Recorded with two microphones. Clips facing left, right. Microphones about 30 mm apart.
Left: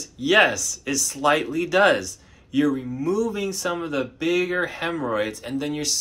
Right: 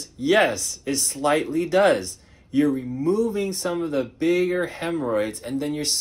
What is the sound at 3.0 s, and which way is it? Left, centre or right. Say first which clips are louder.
Speech: right 2 dB; right.